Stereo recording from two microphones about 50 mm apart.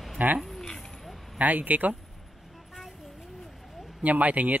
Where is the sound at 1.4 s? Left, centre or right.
Right.